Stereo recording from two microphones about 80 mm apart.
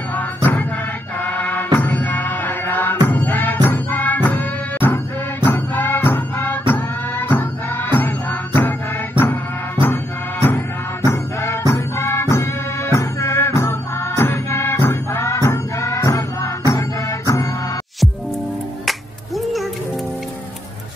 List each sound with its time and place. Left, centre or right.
0.1 s music: left
11.1 s music: left
18.9 s music: centre